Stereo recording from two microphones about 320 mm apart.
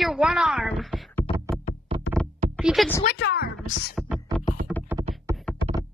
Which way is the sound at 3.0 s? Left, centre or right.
Left.